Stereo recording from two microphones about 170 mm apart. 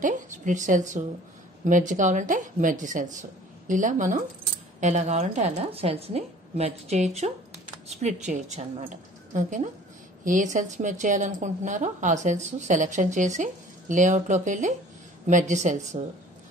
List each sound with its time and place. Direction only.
0.0 s a woman's voice: 50° right (ahead or behind)